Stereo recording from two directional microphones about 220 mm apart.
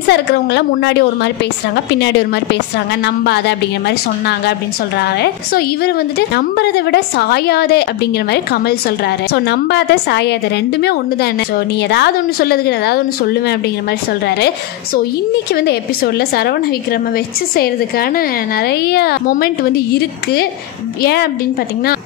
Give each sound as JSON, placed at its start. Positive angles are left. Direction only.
{"t": 0.1, "sound": "a woman's voice", "side_deg": 50}
{"t": 15.5, "sound": "a woman's voice", "side_deg": 45}